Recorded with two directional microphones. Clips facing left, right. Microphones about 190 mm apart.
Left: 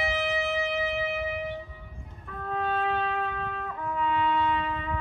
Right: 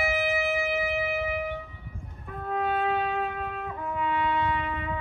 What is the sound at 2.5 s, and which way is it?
Music, 10° right (ahead or behind).